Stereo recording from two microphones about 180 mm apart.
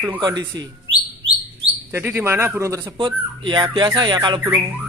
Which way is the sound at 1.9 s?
10° right (ahead or behind).